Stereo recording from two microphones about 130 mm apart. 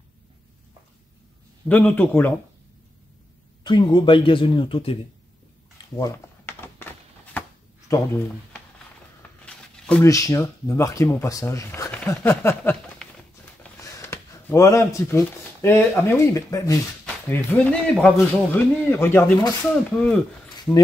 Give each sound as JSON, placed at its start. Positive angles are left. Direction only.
{"t": 1.7, "sound": "a man's voice", "side_deg": 15}
{"t": 3.6, "sound": "speech", "side_deg": 35}
{"t": 5.9, "sound": "a sound", "side_deg": 25}
{"t": 7.9, "sound": "speech", "side_deg": 25}
{"t": 9.4, "sound": "a sound", "side_deg": 10}
{"t": 10.0, "sound": "speech", "side_deg": 25}
{"t": 13.0, "sound": "a sound", "side_deg": 5}
{"t": 13.7, "sound": "speech", "side_deg": 25}
{"t": 17.3, "sound": "a man's voice", "side_deg": 10}